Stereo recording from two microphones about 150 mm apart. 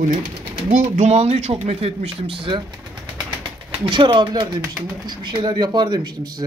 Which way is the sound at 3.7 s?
35° right (ahead or behind).